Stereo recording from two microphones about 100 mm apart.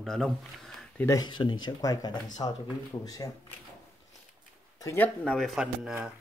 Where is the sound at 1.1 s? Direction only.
50° left (ahead or behind).